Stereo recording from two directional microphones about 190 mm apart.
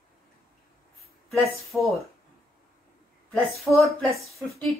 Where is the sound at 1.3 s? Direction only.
Centre (ahead or behind).